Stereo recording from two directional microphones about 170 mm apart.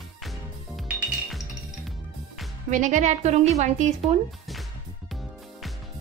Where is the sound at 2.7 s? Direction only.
45° right (ahead or behind).